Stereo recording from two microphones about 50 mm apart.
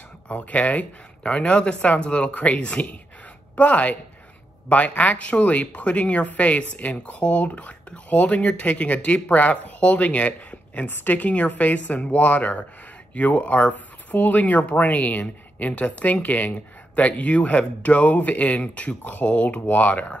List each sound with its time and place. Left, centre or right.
0.4 s a woman's voice: left